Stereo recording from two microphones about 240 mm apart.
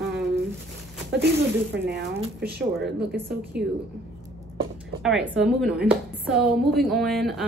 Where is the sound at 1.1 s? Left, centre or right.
Right.